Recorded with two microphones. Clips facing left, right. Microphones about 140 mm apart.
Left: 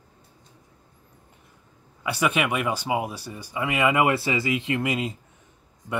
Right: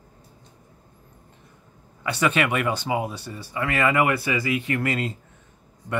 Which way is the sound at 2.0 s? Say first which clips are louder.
Right 1 dB; 10° left (ahead or behind).